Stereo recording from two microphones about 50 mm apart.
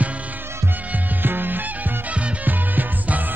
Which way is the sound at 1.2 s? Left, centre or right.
Right.